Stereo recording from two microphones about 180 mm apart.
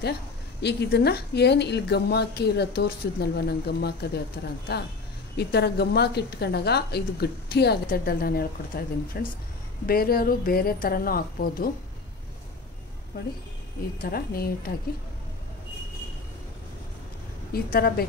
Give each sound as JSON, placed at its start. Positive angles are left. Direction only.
{"t": 0.6, "sound": "a woman's voice", "side_deg": 70}
{"t": 5.3, "sound": "a woman's voice", "side_deg": 65}
{"t": 14.0, "sound": "a woman's voice", "side_deg": 55}
{"t": 17.5, "sound": "a woman's voice", "side_deg": 55}